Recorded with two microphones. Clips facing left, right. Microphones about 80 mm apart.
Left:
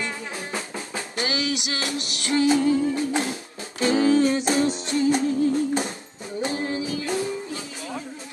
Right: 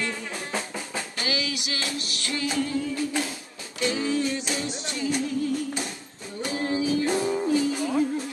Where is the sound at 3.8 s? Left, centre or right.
Left.